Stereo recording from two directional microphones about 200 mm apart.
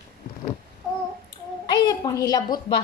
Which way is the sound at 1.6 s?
20° left (ahead or behind).